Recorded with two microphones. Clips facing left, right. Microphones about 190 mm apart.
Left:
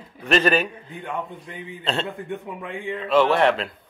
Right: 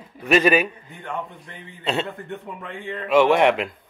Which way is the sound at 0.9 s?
10° left (ahead or behind).